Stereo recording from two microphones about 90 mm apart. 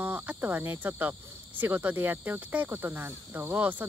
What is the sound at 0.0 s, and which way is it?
Speech, 20° right (ahead or behind).